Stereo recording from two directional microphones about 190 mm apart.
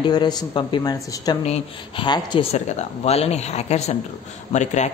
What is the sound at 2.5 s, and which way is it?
Speech, 35° left (ahead or behind).